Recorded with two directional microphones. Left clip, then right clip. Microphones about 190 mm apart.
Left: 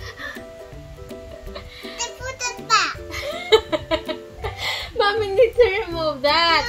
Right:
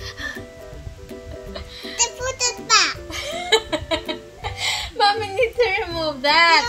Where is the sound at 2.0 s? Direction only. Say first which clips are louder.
Right 6 dB; 20° right (ahead or behind).